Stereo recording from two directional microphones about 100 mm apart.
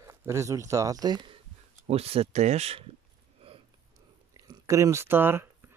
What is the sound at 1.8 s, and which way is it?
Speech, 90° right.